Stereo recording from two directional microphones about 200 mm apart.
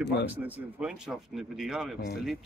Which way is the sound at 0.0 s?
60° left (ahead or behind).